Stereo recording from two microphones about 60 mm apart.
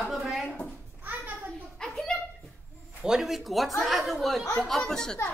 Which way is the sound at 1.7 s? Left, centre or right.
Centre.